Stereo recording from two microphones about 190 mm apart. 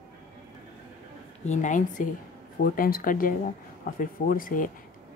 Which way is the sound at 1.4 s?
40° left (ahead or behind).